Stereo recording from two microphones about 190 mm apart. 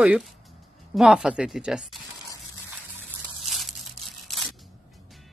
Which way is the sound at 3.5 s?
Centre (ahead or behind).